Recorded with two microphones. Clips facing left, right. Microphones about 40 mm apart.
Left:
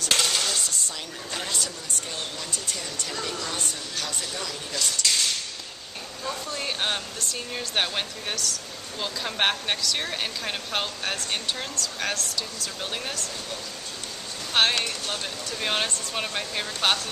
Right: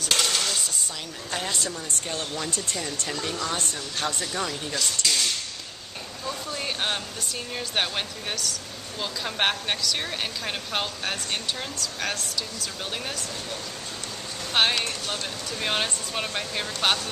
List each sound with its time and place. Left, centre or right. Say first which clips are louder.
0.0 s dishes: even; centre
1.3 s a sound: right 2 dB; centre
4.3 s speech: right 4 dB; centre
4.7 s speech: left 1 dB; centre
14.5 s speech: even; centre